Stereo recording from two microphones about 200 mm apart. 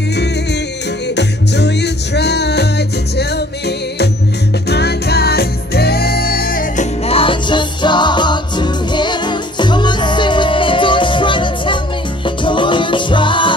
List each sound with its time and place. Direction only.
1.1 s music: 60° left (ahead or behind)
7.1 s music: 25° left (ahead or behind)